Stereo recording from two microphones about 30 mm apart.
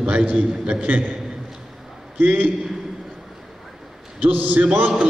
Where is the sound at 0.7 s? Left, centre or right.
Right.